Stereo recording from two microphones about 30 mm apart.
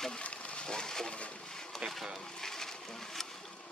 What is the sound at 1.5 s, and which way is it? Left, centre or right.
Boat, centre.